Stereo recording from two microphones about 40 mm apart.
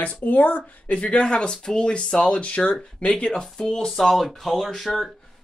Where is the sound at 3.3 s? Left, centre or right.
Centre.